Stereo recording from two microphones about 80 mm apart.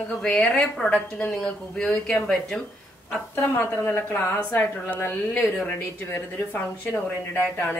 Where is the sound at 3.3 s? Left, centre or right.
Left.